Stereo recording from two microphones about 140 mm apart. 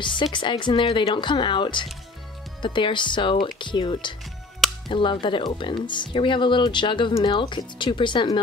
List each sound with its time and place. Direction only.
0.0 s speech: 35° left (ahead or behind)